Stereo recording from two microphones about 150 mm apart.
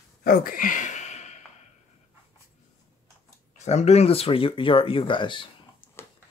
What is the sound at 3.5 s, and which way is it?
Speech, 50° left (ahead or behind).